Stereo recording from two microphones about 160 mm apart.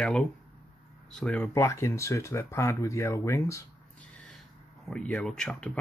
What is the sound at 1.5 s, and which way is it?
Speech, 20° left (ahead or behind).